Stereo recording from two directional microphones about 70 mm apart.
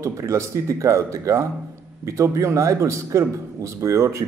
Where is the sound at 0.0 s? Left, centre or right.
Right.